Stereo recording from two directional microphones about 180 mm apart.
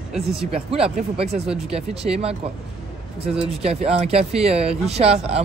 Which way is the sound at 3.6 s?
35° right (ahead or behind).